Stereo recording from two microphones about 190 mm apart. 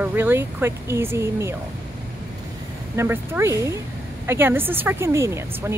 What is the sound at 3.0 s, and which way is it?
Speech, 15° right (ahead or behind).